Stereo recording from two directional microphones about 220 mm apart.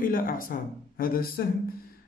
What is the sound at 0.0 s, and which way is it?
A man's voice, 40° left (ahead or behind).